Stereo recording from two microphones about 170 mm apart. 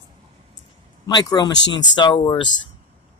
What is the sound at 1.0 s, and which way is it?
Speech, 25° left (ahead or behind).